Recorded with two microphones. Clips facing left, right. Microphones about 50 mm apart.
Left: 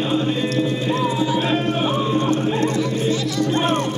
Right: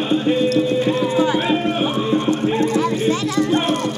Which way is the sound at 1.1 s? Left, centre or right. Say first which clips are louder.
Right 4 dB; right.